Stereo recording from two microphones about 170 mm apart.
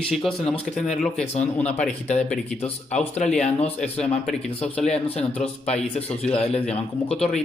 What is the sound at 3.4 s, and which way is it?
Speech, 40° left (ahead or behind).